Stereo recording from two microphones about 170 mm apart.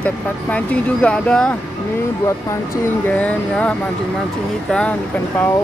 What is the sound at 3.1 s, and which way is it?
Speech, 10° left (ahead or behind).